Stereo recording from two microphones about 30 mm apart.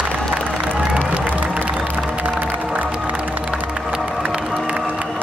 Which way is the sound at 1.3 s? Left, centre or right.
Right.